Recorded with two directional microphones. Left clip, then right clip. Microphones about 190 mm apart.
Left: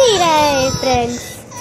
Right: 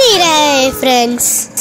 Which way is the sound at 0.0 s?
25° right (ahead or behind).